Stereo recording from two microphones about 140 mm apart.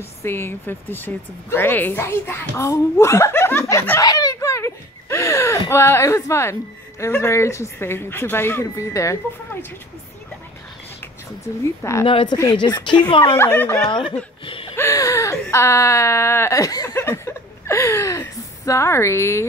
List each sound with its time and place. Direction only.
0.2 s speech: 15° left (ahead or behind)
4.0 s a sound: 25° left (ahead or behind)
7.0 s speech: 20° left (ahead or behind)
11.8 s speech: 20° left (ahead or behind)
12.1 s speech: 40° left (ahead or behind)
13.4 s speech: 15° left (ahead or behind)
14.4 s a sound: 40° left (ahead or behind)
14.8 s speech: 20° left (ahead or behind)